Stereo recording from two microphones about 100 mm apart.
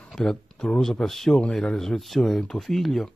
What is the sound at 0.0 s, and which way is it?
Speech, 5° left (ahead or behind).